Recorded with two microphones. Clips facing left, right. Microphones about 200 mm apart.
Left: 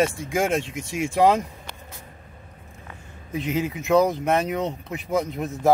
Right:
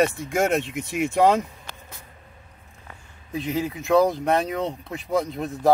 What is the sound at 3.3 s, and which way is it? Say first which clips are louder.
Speech: left 1 dB; 20° left (ahead or behind).